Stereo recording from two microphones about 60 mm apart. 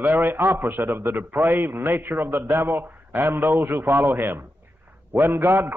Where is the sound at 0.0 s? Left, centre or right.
Right.